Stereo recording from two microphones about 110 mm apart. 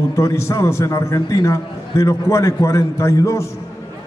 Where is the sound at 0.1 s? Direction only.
25° left (ahead or behind).